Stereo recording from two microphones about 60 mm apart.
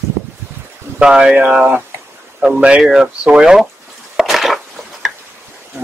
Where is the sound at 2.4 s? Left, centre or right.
Right.